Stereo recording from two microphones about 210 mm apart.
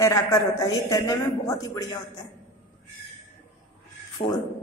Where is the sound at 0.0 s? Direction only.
15° left (ahead or behind).